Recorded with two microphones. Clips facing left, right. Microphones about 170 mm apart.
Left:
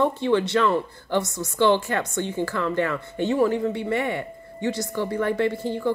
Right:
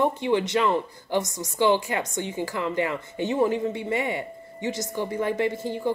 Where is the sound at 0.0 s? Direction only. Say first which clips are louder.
Left 2 dB; 15° right (ahead or behind).